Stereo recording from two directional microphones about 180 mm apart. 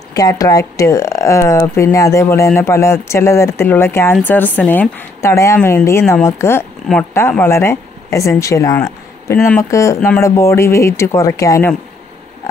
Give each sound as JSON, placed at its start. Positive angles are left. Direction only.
{"t": 0.1, "sound": "speech", "side_deg": 20}